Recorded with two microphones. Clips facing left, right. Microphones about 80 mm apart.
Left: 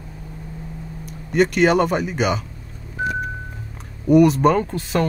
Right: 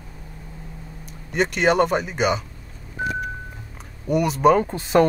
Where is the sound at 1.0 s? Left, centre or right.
Centre.